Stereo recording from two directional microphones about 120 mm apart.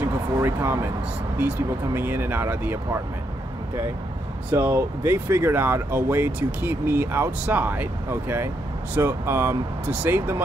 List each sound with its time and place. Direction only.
0.0 s speech: 20° right (ahead or behind)
2.0 s speech: 20° right (ahead or behind)
4.5 s speech: 20° right (ahead or behind)